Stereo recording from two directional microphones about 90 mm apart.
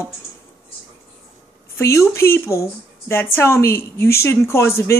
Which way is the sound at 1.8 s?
30° left (ahead or behind).